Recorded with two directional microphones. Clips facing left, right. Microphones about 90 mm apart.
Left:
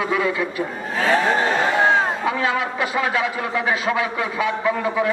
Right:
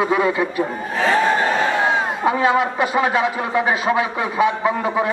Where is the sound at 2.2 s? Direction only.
25° right (ahead or behind).